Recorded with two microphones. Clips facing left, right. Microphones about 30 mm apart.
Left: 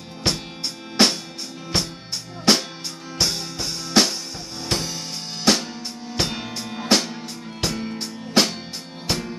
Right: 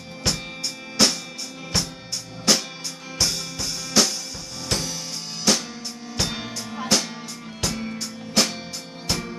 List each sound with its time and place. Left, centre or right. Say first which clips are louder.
0.3 s music: left 2 dB; left
3.2 s drum: left 1 dB; left
4.6 s music: left 1 dB; centre
5.5 s drum: left 3 dB; left
6.2 s music: left 2 dB; left